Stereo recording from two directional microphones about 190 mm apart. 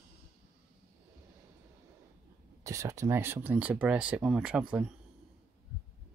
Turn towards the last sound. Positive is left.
turn(degrees=-5)  # may be behind; listen again after turning